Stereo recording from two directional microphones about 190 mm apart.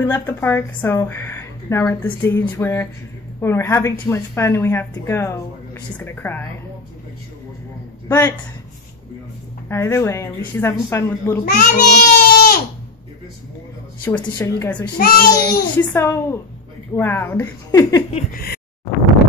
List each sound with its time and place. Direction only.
0.0 s a woman's voice: 10° left (ahead or behind)
8.1 s a woman's voice: 10° left (ahead or behind)
9.7 s a woman's voice: 15° left (ahead or behind)
11.6 s speech: 50° left (ahead or behind)
14.2 s a woman's voice: 15° left (ahead or behind)
15.0 s a child's voice: 50° left (ahead or behind)
15.3 s a child's voice: 20° left (ahead or behind)
18.3 s a child's voice: 50° left (ahead or behind)